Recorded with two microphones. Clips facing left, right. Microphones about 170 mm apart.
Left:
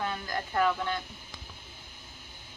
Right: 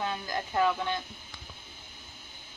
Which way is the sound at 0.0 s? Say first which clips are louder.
Right 1 dB; 15° right (ahead or behind).